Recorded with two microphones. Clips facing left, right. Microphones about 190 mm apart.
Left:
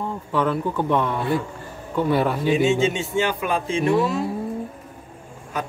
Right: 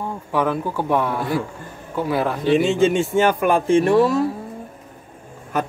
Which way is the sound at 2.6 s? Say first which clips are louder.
Right 3 dB; 55° right (ahead or behind).